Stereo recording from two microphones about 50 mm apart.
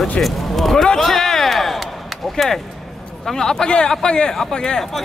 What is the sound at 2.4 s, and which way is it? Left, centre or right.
Speech, centre.